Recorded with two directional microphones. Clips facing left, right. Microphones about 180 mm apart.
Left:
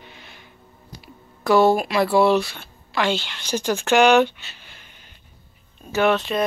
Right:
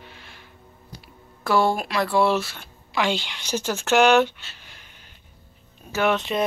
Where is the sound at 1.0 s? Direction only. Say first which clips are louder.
Left 6 dB; centre (ahead or behind).